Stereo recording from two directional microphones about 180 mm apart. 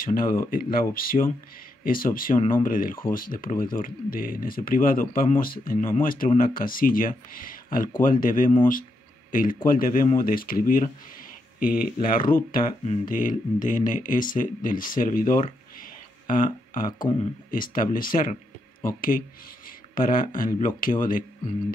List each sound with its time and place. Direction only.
0.0 s speech: 50° left (ahead or behind)
15.8 s a sound: 50° left (ahead or behind)
17.5 s speech: 50° left (ahead or behind)